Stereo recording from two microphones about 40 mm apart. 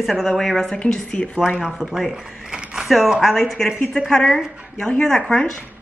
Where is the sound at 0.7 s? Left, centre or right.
Centre.